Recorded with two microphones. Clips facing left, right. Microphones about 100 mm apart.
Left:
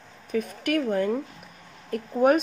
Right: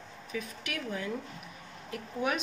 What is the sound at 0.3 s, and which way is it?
Speech, 50° left (ahead or behind).